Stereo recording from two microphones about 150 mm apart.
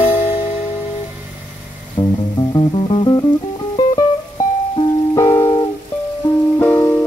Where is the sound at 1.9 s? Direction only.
30° left (ahead or behind).